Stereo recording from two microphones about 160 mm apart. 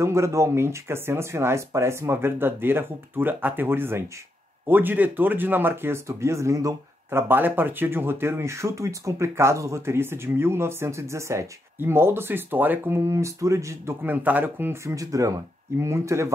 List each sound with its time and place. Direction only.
0.0 s speech: 15° right (ahead or behind)